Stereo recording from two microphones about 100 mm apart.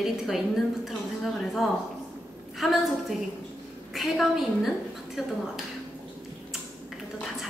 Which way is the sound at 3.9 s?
Centre (ahead or behind).